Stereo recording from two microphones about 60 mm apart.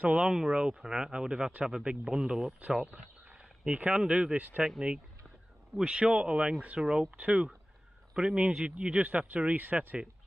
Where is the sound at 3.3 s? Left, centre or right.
Centre.